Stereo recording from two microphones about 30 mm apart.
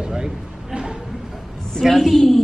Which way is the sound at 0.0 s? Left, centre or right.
Right.